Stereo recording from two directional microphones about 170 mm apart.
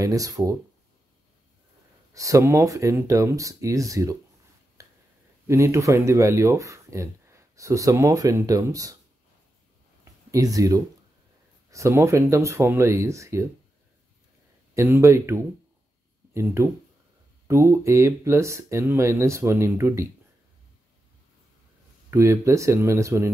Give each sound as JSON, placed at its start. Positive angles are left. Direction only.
{"t": 0.0, "sound": "speech", "side_deg": -20}
{"t": 2.1, "sound": "speech", "side_deg": -20}
{"t": 4.8, "sound": "a sound", "side_deg": -20}
{"t": 5.5, "sound": "speech", "side_deg": -15}
{"t": 10.3, "sound": "speech", "side_deg": -20}
{"t": 14.7, "sound": "speech", "side_deg": -15}
{"t": 22.1, "sound": "speech", "side_deg": -15}